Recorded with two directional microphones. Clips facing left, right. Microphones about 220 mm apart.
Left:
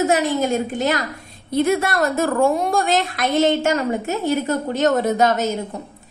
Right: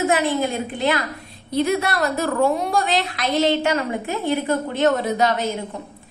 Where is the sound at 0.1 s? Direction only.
45° left (ahead or behind).